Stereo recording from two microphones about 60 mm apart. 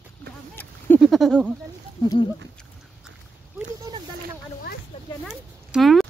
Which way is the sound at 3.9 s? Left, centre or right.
Right.